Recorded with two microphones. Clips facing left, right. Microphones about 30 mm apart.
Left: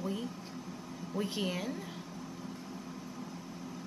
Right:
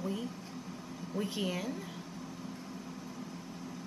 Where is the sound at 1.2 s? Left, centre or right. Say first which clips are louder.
Right 1 dB; centre.